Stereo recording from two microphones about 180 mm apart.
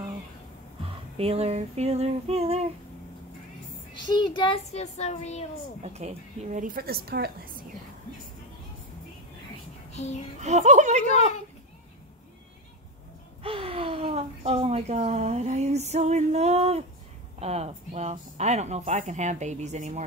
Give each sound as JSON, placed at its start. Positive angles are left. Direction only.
{"t": 0.8, "sound": "speech", "side_deg": -35}
{"t": 3.9, "sound": "speech", "side_deg": 25}
{"t": 5.8, "sound": "a woman's voice", "side_deg": -35}
{"t": 9.9, "sound": "child singing", "side_deg": 40}
{"t": 10.4, "sound": "speech", "side_deg": -40}
{"t": 13.4, "sound": "speech", "side_deg": -30}